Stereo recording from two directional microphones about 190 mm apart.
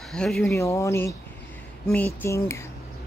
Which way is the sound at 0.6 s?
15° left (ahead or behind).